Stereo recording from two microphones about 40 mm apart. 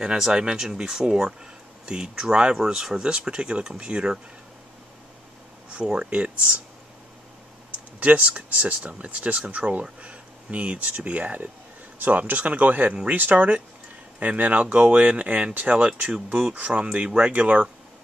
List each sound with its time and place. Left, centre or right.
0.0 s speech: centre
5.7 s speech: right
7.7 s computer keyboard: right
8.5 s speech: right